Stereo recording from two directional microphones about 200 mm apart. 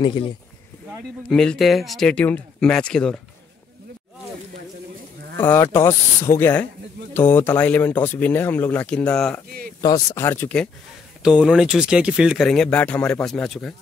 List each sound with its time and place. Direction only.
0.0 s speech: 25° left (ahead or behind)
1.3 s speech: 5° left (ahead or behind)
5.4 s speech: 10° left (ahead or behind)
9.8 s speech: 20° left (ahead or behind)
11.2 s speech: 5° right (ahead or behind)